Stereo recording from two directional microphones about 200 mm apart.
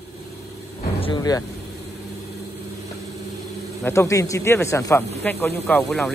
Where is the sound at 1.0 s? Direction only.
20° left (ahead or behind).